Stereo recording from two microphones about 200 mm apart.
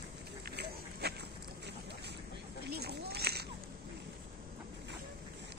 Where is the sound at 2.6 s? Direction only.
50° right (ahead or behind).